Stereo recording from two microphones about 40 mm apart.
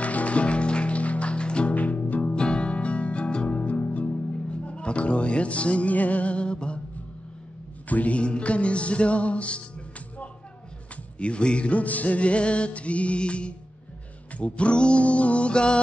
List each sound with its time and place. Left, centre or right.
0.0 s music: left
1.7 s music: left
2.3 s music: left
7.9 s music: left
8.2 s music: left
11.1 s music: left